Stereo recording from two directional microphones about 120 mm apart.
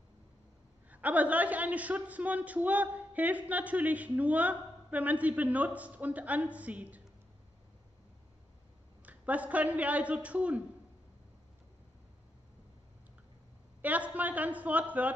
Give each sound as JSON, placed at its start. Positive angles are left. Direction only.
{"t": 0.8, "sound": "a man's voice", "side_deg": -15}
{"t": 9.0, "sound": "a man's voice", "side_deg": -10}
{"t": 13.7, "sound": "a man's voice", "side_deg": -15}